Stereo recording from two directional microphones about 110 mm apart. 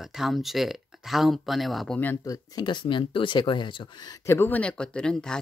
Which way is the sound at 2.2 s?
35° left (ahead or behind).